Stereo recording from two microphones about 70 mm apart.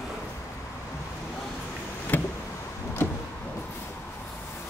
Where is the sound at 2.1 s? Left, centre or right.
Left.